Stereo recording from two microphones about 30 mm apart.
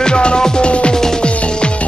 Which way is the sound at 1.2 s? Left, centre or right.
Left.